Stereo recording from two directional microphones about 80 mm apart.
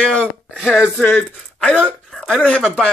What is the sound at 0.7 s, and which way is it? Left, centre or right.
Speech, left.